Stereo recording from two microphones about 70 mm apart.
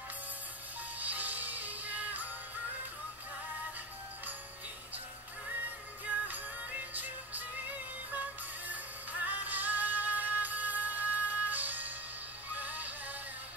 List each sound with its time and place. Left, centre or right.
0.9 s music: right
6.0 s music: right
9.2 s music: right